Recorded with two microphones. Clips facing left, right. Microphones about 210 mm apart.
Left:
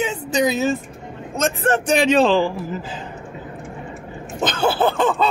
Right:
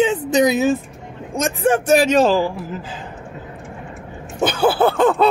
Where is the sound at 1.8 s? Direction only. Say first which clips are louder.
Right 1 dB; 40° right (ahead or behind).